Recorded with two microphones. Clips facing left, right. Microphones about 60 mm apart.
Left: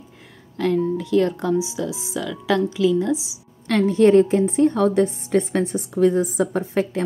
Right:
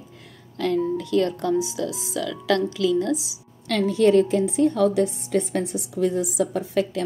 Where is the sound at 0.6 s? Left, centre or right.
Left.